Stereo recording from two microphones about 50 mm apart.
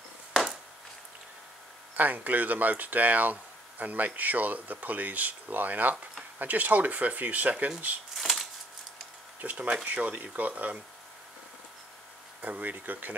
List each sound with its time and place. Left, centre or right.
2.0 s speech: right
8.2 s a sound: centre
9.4 s speech: right
12.4 s speech: right